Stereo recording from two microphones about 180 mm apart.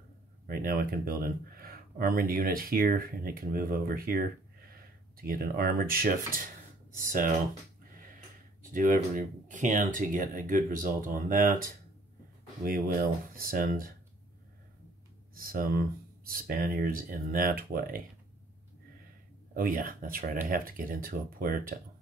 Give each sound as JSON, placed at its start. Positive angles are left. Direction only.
{"t": 0.5, "sound": "speech", "side_deg": -55}
{"t": 8.6, "sound": "speech", "side_deg": -50}
{"t": 15.3, "sound": "speech", "side_deg": -55}
{"t": 19.5, "sound": "speech", "side_deg": -50}